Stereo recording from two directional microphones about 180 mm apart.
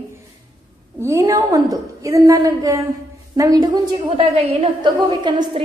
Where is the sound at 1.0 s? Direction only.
15° right (ahead or behind).